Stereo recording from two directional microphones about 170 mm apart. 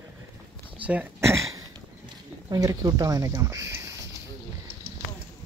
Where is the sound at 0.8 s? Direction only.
10° right (ahead or behind).